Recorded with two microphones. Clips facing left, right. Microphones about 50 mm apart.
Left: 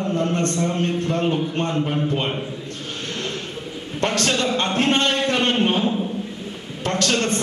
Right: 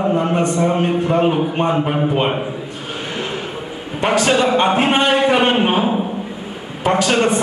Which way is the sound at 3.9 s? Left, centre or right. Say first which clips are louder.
Right 6 dB; centre.